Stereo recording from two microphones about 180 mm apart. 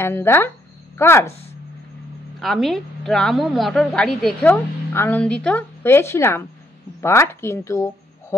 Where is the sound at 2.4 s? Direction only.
Centre (ahead or behind).